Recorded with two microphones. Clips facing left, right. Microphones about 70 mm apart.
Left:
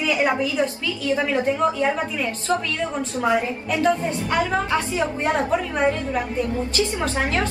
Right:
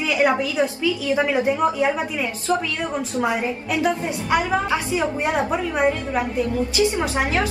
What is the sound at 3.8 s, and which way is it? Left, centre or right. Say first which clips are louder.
A woman's voice: left 3 dB; centre.